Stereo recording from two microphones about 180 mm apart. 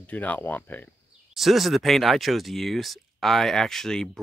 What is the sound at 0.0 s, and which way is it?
Speech, 10° left (ahead or behind).